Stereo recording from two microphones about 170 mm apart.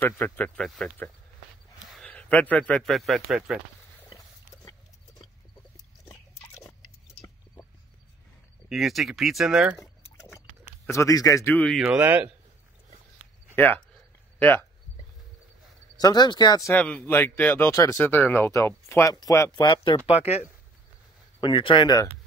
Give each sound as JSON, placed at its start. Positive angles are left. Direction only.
{"t": 0.2, "sound": "speech", "side_deg": 5}
{"t": 8.6, "sound": "speech", "side_deg": 0}
{"t": 10.9, "sound": "speech", "side_deg": 20}
{"t": 11.8, "sound": "speech", "side_deg": -10}
{"t": 13.6, "sound": "speech", "side_deg": 10}
{"t": 16.0, "sound": "speech", "side_deg": 25}
{"t": 16.7, "sound": "speech", "side_deg": 10}
{"t": 21.4, "sound": "speech", "side_deg": 25}